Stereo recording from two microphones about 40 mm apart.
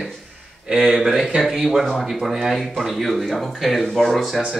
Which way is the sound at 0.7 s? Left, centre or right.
Centre.